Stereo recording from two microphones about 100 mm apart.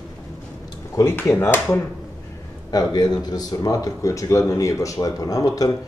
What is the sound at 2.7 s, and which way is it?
A man's voice, 40° left (ahead or behind).